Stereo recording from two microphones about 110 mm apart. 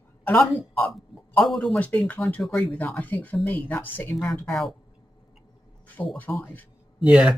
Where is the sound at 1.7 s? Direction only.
15° left (ahead or behind).